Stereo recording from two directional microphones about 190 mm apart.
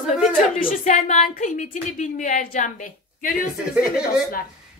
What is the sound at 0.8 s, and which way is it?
A woman's voice, 40° left (ahead or behind).